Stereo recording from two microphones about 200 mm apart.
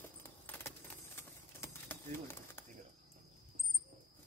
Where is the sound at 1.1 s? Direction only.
10° left (ahead or behind).